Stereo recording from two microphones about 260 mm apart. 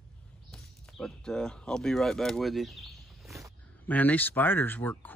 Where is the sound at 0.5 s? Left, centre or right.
Centre.